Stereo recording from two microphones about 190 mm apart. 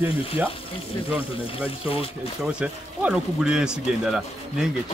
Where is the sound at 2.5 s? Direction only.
5° right (ahead or behind).